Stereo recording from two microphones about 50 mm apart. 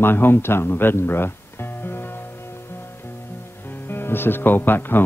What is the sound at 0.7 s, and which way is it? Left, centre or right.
Music, left.